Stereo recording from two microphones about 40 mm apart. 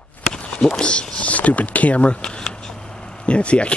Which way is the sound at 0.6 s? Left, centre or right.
Left.